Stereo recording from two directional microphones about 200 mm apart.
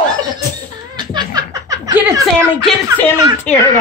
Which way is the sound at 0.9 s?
20° right (ahead or behind).